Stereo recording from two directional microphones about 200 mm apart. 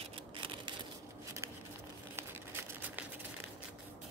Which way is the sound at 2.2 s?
10° right (ahead or behind).